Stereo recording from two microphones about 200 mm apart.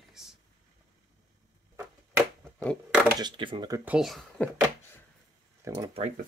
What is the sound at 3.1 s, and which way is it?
Speech, 25° right (ahead or behind).